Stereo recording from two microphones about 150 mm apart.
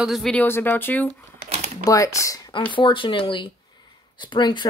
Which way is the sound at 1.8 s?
20° left (ahead or behind).